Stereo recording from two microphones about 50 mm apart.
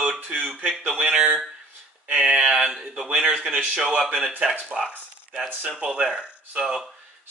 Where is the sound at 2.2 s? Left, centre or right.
Centre.